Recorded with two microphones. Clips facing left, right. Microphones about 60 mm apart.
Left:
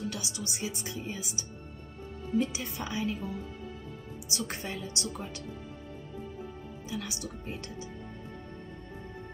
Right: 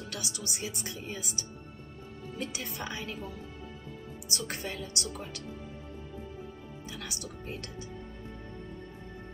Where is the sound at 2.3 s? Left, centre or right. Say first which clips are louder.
Left 7 dB; centre.